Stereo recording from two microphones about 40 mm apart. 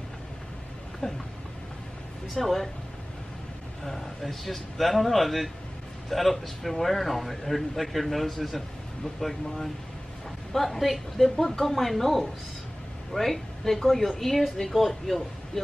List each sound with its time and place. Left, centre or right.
1.0 s a sound: left
2.2 s a man's voice: centre
3.8 s a man's voice: centre